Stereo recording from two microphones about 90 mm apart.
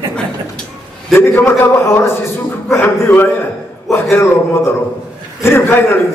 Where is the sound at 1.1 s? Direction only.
25° left (ahead or behind).